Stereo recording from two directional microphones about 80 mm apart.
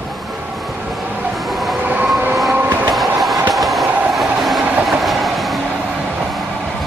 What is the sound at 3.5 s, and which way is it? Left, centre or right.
Train, centre.